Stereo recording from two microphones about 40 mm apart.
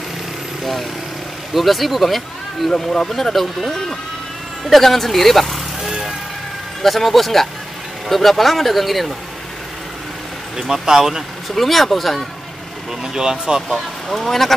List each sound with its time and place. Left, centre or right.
1.5 s speech: centre
2.7 s speech: centre
5.8 s vehicle: centre
6.8 s speech: centre
10.6 s speech: centre
11.4 s speech: centre
13.0 s speech: centre
13.7 s speech: centre